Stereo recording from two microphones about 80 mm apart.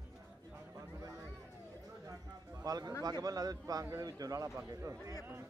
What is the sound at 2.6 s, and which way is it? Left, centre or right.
Speech, right.